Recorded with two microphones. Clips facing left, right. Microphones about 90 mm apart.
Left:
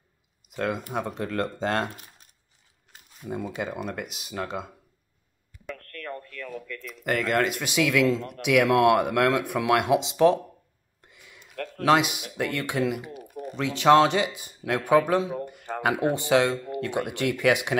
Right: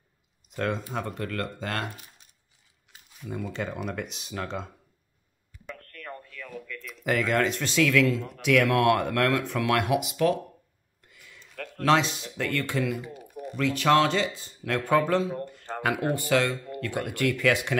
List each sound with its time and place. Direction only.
0.5 s speech: 5° left (ahead or behind)
0.9 s speech: 20° left (ahead or behind)
3.2 s speech: 20° left (ahead or behind)
3.4 s speech: 10° left (ahead or behind)
5.7 s a sound: 5° right (ahead or behind); by 8.1 s 15° left (ahead or behind)
8.4 s speech: 15° left (ahead or behind)
11.0 s a sound: 20° left (ahead or behind)
11.5 s a sound: centre (ahead or behind)
11.9 s speech: 10° left (ahead or behind)